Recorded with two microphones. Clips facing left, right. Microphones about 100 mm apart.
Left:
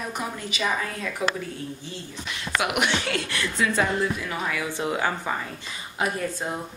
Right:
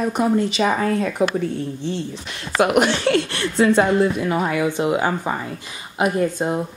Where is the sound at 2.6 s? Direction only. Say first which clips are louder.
Right 10 dB; 40° right (ahead or behind).